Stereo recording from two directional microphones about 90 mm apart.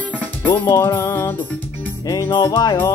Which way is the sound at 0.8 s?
30° left (ahead or behind).